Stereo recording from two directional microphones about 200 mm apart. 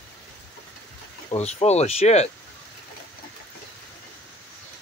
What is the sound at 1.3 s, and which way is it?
Speech, 35° left (ahead or behind).